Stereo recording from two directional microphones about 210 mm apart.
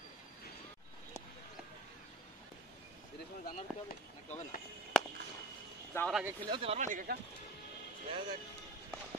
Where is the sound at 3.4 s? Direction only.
40° left (ahead or behind).